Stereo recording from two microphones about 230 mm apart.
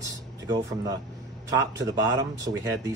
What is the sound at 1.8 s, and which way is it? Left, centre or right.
Speech, centre.